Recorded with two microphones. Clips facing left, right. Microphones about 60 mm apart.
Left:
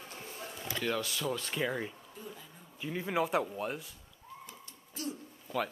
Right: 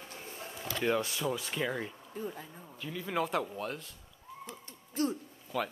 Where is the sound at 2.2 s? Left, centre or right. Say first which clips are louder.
Right 9 dB; right.